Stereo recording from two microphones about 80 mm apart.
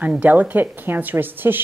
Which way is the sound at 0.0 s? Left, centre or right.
Centre.